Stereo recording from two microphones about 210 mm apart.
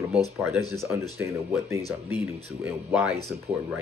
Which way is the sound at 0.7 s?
15° right (ahead or behind).